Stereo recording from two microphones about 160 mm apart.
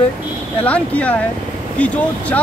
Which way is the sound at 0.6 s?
10° left (ahead or behind).